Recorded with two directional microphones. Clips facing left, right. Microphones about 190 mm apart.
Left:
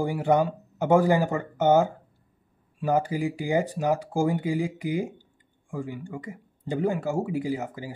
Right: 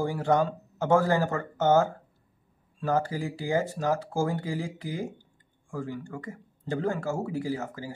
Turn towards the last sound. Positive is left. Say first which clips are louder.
# left 2 dB
turn(degrees=15)  # may be behind; listen again after turning